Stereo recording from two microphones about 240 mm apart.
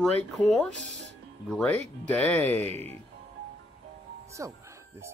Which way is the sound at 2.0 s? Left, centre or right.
Centre.